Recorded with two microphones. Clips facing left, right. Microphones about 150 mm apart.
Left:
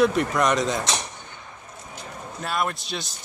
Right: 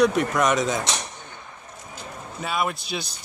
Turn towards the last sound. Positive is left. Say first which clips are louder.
# right 2 dB
turn(degrees=0)  # may be behind; listen again after turning